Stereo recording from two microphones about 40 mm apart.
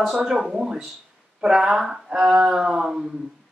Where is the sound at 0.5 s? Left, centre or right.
Centre.